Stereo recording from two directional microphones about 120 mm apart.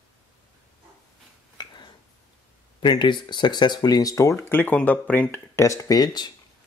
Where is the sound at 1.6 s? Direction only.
40° left (ahead or behind).